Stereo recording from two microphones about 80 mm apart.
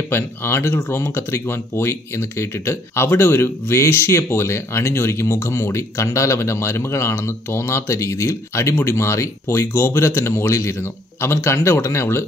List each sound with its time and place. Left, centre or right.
0.1 s speech: left